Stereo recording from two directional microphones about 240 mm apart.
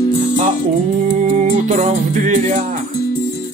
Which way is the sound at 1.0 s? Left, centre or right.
Right.